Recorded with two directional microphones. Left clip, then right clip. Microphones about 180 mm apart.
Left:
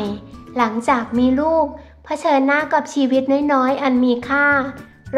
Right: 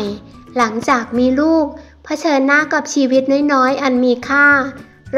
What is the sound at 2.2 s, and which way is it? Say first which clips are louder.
A woman's voice: right 3 dB; 15° right (ahead or behind).